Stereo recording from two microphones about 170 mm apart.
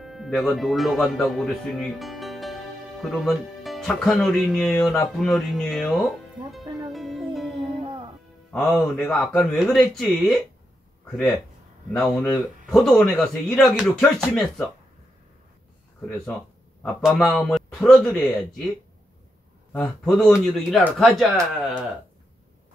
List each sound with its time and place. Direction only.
0.0 s speech: centre (ahead or behind)
6.9 s music: centre (ahead or behind)
7.5 s music: 30° right (ahead or behind)
8.5 s speech: centre (ahead or behind)
16.8 s speech: 5° left (ahead or behind)
19.7 s speech: 5° left (ahead or behind)